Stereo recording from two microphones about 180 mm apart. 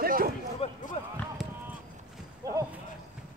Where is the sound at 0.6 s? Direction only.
35° left (ahead or behind).